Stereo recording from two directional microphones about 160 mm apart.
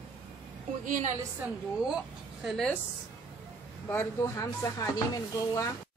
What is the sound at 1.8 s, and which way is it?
Speech, 5° right (ahead or behind).